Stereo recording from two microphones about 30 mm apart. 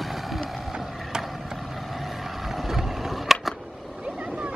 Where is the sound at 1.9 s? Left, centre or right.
Centre.